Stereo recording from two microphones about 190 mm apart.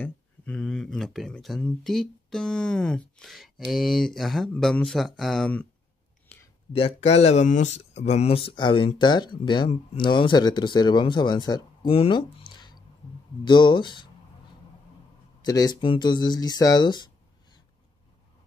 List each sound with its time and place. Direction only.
0.0 s speech: 5° left (ahead or behind)
6.3 s a sound: 10° left (ahead or behind)
6.7 s speech: 30° left (ahead or behind)
15.4 s speech: 20° left (ahead or behind)